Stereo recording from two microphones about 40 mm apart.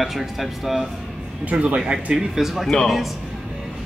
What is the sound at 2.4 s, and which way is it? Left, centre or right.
Speech, centre.